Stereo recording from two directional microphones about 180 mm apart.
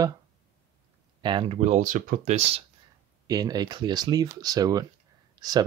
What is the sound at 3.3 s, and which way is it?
Speech, 20° right (ahead or behind).